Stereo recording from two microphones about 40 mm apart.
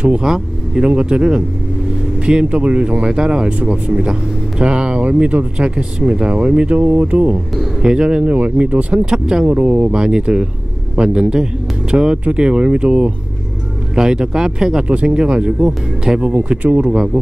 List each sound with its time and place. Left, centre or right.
0.2 s speech: centre
0.8 s speech: right
3.5 s speech: right
5.0 s speech: right
5.6 s speech: right
7.8 s speech: right
8.3 s speech: right
9.0 s speech: centre
9.5 s speech: right
9.9 s speech: centre
13.9 s speech: centre
14.9 s speech: right
16.4 s speech: right
16.8 s speech: right